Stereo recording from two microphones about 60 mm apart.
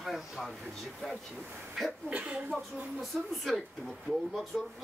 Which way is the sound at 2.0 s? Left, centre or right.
Right.